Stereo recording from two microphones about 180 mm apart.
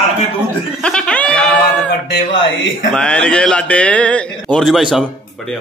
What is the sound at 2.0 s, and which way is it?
Speech, 90° left.